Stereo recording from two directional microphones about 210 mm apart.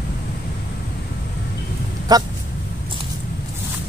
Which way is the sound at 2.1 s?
20° right (ahead or behind).